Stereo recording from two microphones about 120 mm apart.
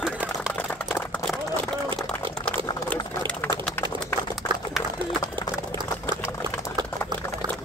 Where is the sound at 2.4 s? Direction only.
10° left (ahead or behind).